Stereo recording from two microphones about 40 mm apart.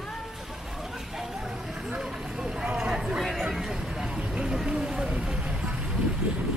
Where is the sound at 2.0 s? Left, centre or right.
Centre.